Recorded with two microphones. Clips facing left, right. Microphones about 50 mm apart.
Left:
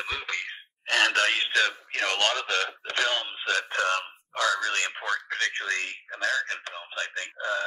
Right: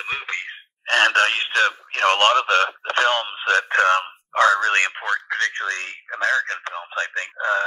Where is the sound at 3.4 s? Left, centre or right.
Right.